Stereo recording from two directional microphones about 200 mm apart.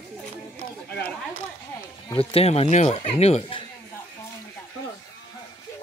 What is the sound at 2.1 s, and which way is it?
Speech, 25° left (ahead or behind).